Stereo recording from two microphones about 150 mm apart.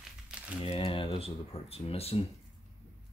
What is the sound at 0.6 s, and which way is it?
Speech, 40° left (ahead or behind).